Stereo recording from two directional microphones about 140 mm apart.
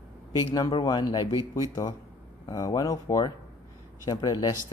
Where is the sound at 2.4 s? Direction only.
25° left (ahead or behind).